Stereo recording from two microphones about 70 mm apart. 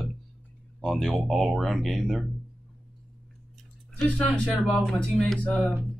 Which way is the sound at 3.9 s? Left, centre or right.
Centre.